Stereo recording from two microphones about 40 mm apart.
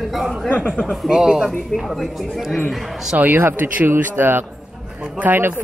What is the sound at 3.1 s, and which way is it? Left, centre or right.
Speech, right.